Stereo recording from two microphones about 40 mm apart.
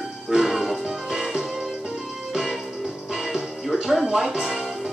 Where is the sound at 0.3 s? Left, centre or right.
Centre.